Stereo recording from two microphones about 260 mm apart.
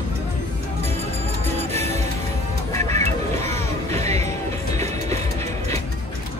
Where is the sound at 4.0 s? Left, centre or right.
Right.